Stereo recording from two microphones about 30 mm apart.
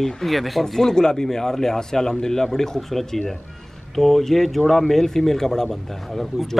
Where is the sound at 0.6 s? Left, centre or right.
Centre.